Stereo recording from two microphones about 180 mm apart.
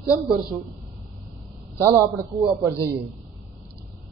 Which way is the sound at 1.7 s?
15° right (ahead or behind).